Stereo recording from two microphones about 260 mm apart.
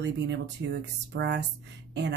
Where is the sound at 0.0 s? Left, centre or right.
Right.